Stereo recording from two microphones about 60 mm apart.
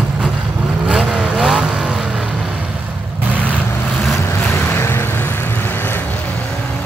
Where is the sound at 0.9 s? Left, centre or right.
Centre.